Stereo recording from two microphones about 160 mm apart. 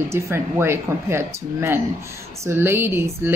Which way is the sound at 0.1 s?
15° right (ahead or behind).